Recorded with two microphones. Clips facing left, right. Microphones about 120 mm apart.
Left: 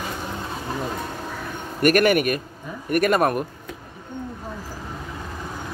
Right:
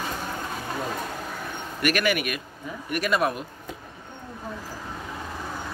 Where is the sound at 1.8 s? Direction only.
45° left (ahead or behind).